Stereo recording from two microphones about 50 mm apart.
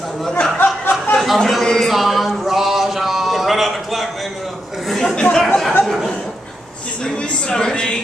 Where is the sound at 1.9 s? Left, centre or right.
Centre.